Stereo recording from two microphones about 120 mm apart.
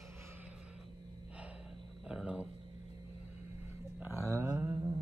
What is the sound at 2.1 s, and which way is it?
Speech, 10° right (ahead or behind).